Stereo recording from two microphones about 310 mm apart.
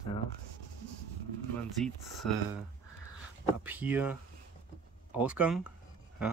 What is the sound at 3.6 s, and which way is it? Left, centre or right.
Speech, centre.